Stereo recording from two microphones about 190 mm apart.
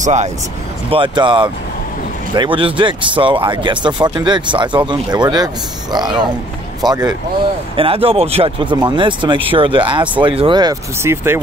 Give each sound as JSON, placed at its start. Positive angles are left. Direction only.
{"t": 0.0, "sound": "speech", "side_deg": -35}
{"t": 0.8, "sound": "speech", "side_deg": -25}